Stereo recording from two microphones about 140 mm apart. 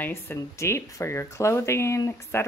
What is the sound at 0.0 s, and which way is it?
Speech, 15° left (ahead or behind).